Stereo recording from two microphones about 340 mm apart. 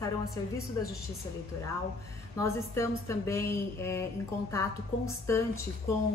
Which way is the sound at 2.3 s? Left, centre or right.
Centre.